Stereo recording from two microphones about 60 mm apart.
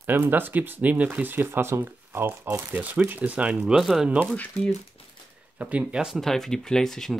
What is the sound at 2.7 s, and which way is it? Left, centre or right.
Speech, right.